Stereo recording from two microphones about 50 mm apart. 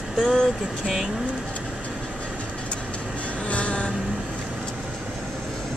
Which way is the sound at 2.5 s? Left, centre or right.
Left.